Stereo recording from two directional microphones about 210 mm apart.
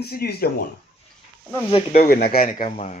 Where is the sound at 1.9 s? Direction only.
45° left (ahead or behind).